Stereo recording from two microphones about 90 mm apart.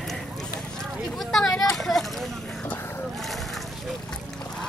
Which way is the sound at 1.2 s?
5° left (ahead or behind).